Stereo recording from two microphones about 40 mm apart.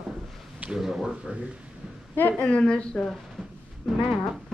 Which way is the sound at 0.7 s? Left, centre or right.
Centre.